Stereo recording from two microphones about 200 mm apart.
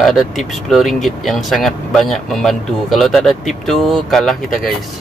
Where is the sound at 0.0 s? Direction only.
Centre (ahead or behind).